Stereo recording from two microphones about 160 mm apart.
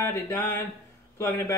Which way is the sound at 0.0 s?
15° left (ahead or behind).